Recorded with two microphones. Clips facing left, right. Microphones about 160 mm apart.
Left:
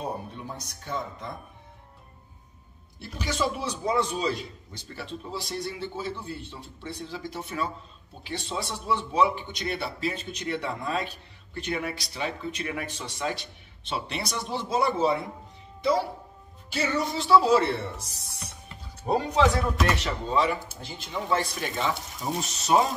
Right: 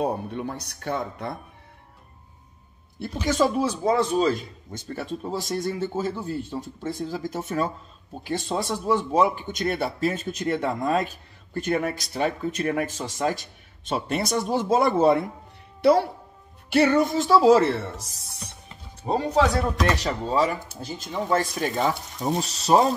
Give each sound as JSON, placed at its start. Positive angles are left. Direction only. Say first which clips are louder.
{"t": 0.0, "sound": "speech", "louder": "right 8 dB", "side_deg": -65}
{"t": 3.0, "sound": "a man's voice", "louder": "right 7 dB", "side_deg": -50}
{"t": 19.1, "sound": "a man's voice", "louder": "even", "side_deg": -25}
{"t": 19.5, "sound": "speech", "louder": "right 2 dB", "side_deg": -40}